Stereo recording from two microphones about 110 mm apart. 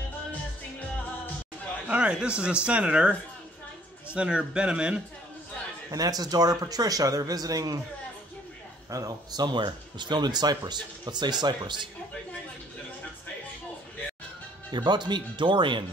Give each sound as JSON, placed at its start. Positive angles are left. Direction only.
{"t": 0.3, "sound": "music", "side_deg": 15}
{"t": 1.9, "sound": "speech", "side_deg": -10}
{"t": 5.9, "sound": "speech", "side_deg": -35}
{"t": 8.9, "sound": "speech", "side_deg": -35}
{"t": 14.7, "sound": "speech", "side_deg": -40}